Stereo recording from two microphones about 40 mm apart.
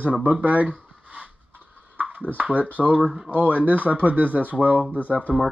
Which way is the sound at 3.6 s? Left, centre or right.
Right.